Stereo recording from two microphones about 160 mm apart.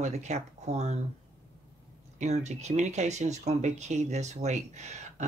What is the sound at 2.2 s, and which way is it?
Speech, 45° right (ahead or behind).